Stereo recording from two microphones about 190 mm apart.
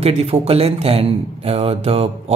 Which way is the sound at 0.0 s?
35° right (ahead or behind).